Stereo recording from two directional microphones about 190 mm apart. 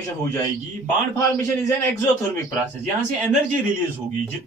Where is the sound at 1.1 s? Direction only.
15° left (ahead or behind).